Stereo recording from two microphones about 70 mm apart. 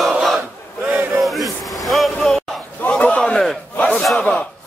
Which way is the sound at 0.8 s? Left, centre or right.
Right.